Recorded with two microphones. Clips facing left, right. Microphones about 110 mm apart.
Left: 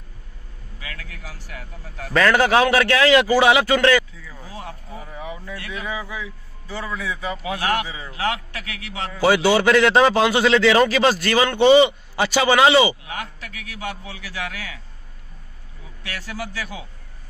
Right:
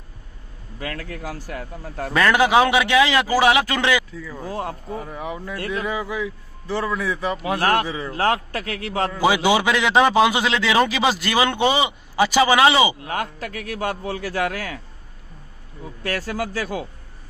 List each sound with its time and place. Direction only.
0.7 s a man's voice: 50° right (ahead or behind)
2.1 s a man's voice: 5° right (ahead or behind)
4.3 s a man's voice: 50° right (ahead or behind)
9.2 s a man's voice: 10° right (ahead or behind)
13.0 s a man's voice: 45° right (ahead or behind)
15.8 s a man's voice: 45° right (ahead or behind)